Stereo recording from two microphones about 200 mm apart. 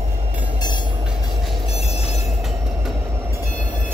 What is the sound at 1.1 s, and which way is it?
Train, centre (ahead or behind).